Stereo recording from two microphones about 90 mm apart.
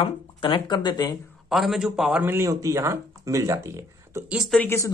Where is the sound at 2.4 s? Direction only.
35° right (ahead or behind).